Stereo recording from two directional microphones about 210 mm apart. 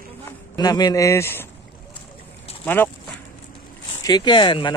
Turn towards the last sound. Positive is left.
turn(degrees=20)  # may be behind; listen again after turning